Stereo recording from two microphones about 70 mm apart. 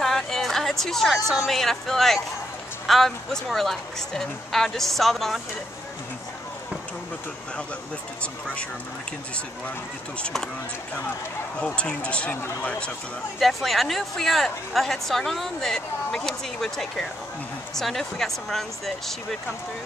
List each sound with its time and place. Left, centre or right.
0.0 s a sound: centre
1.1 s speech: centre
8.2 s speech: centre
11.6 s speech: centre
13.4 s speech: centre